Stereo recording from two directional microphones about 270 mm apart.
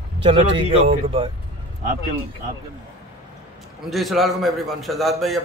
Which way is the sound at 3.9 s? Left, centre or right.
Centre.